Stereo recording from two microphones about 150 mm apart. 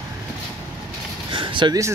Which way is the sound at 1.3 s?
35° right (ahead or behind).